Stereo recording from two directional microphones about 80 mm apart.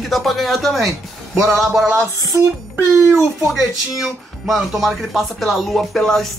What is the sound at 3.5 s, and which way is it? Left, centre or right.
Speech, centre.